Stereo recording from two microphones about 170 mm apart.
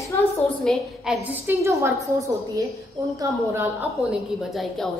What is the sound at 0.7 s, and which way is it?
A woman's voice, centre (ahead or behind).